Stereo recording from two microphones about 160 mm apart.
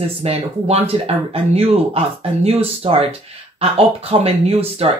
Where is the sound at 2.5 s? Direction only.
35° right (ahead or behind).